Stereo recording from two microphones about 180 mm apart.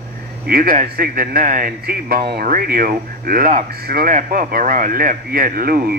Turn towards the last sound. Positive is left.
turn(degrees=-55)  # may be behind; listen again after turning